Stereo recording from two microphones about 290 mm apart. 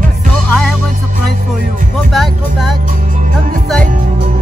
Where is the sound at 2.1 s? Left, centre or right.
Centre.